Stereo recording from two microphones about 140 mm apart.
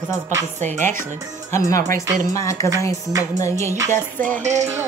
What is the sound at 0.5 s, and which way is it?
Music, 60° right (ahead or behind).